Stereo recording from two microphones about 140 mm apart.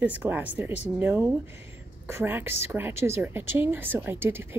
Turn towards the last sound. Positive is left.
turn(degrees=-15)  # may be behind; listen again after turning